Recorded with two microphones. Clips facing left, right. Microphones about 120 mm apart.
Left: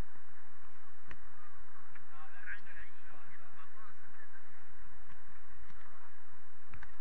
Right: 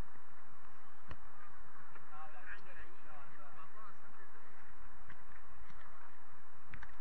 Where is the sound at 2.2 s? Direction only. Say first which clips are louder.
Left 2 dB; 40° right (ahead or behind).